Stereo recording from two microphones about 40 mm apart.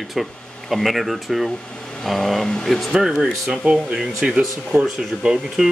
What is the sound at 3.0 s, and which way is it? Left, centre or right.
Speech, centre.